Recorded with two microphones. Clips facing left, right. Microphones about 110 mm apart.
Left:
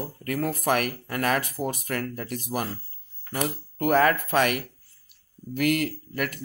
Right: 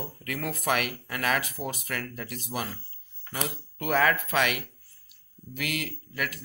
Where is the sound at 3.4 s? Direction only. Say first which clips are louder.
Left 6 dB; 45° left (ahead or behind).